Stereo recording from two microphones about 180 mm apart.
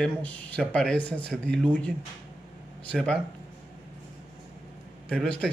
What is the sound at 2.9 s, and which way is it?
Speech, 5° left (ahead or behind).